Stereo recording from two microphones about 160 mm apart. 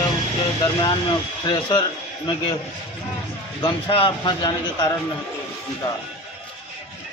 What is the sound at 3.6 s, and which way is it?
Speech, 30° left (ahead or behind).